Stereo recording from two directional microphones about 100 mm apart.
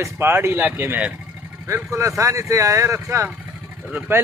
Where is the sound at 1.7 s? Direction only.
30° right (ahead or behind).